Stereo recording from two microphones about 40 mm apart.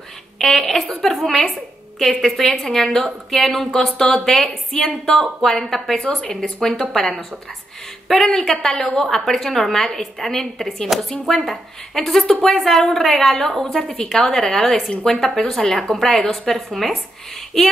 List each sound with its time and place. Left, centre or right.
0.4 s a woman's voice: centre
5.9 s a woman's voice: left
6.9 s a woman's voice: centre
12.3 s a woman's voice: centre